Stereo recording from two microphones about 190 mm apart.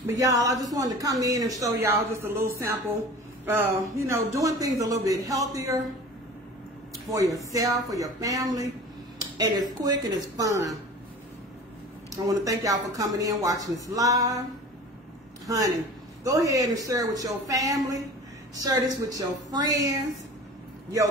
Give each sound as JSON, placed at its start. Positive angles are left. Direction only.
{"t": 0.2, "sound": "speech", "side_deg": -15}
{"t": 7.1, "sound": "speech", "side_deg": -15}
{"t": 12.1, "sound": "speech", "side_deg": -20}
{"t": 15.4, "sound": "a man's voice", "side_deg": -20}